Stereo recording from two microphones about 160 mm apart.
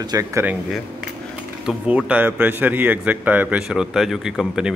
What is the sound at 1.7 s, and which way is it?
A man's voice, 5° right (ahead or behind).